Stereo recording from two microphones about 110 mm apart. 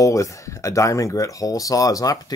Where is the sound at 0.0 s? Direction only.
30° left (ahead or behind).